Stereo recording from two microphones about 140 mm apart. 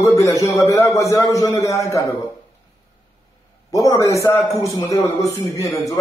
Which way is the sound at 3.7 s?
25° left (ahead or behind).